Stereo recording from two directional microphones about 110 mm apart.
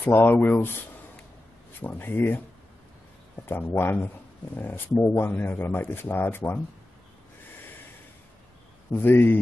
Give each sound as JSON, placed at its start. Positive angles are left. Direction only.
{"t": 0.0, "sound": "speech", "side_deg": 15}
{"t": 1.8, "sound": "speech", "side_deg": 20}
{"t": 3.4, "sound": "speech", "side_deg": 20}
{"t": 8.9, "sound": "speech", "side_deg": 20}